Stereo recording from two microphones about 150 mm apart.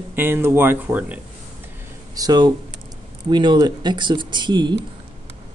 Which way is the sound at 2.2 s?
25° right (ahead or behind).